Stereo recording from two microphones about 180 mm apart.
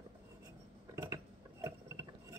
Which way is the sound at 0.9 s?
15° right (ahead or behind).